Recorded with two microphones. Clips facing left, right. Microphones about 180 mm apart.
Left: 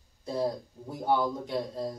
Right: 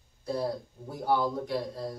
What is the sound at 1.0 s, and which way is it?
Speech, 20° left (ahead or behind).